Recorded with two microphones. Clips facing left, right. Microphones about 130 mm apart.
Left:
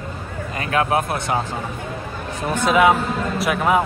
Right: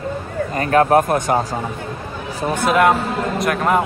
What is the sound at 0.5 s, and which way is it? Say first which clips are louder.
Speech: right 6 dB; 40° right (ahead or behind).